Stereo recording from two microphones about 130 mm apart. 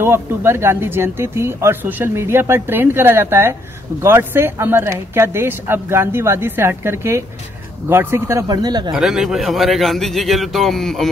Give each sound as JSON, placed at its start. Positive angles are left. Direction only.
{"t": 0.0, "sound": "speech", "side_deg": -20}
{"t": 8.9, "sound": "a man's voice", "side_deg": -5}